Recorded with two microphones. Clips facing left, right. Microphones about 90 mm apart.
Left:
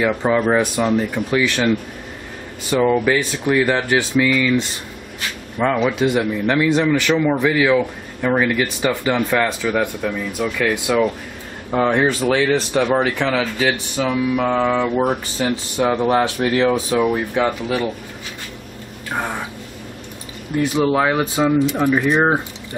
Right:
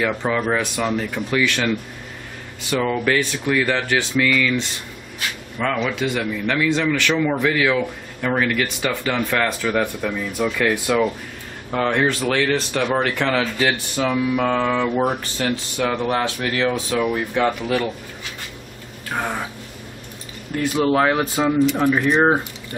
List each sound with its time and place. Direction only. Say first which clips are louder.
0.0 s speech: left 4 dB; 20° left (ahead or behind)
2.7 s speech: left 4 dB; 15° left (ahead or behind)
10.4 s speech: even; centre (ahead or behind)
11.7 s speech: left 3 dB; 15° left (ahead or behind)
17.0 s speech: left 2 dB; 15° left (ahead or behind)
19.1 s speech: left 1 dB; 5° left (ahead or behind)
20.5 s speech: left 1 dB; 5° left (ahead or behind)